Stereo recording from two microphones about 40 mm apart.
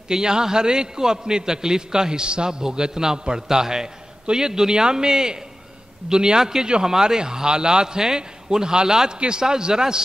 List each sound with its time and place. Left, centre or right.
0.1 s a man's voice: centre